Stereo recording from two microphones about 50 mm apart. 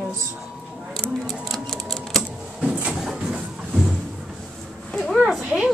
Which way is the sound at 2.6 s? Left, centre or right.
Right.